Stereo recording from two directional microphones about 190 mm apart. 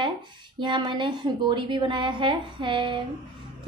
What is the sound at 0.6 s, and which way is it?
A woman's voice, 25° right (ahead or behind).